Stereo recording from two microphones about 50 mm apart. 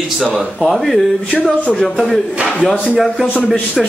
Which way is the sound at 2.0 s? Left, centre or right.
Centre.